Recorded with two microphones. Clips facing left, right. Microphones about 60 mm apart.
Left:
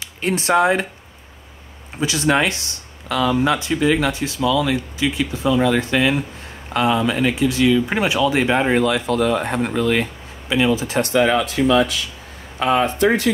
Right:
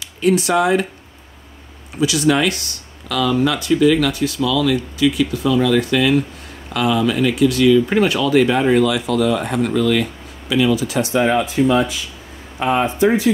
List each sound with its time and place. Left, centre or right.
0.0 s speech: left
2.0 s speech: left
11.0 s speech: left
12.5 s speech: left